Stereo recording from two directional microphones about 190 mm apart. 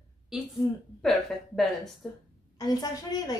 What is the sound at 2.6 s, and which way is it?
Speech, 20° left (ahead or behind).